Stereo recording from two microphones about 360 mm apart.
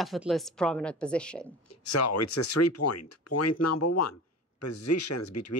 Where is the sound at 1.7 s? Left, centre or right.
Left.